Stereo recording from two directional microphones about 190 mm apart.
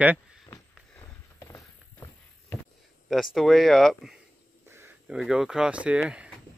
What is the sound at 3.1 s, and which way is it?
Speech, centre (ahead or behind).